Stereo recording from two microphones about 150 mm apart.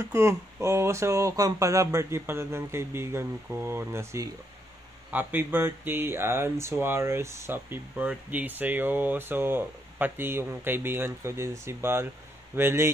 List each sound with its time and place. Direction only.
0.0 s speech: 20° right (ahead or behind)